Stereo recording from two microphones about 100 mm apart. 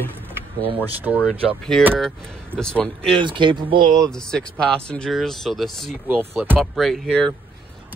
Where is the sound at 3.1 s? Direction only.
55° right (ahead or behind).